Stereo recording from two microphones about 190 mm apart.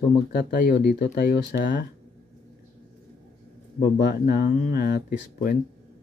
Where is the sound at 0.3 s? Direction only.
55° left (ahead or behind).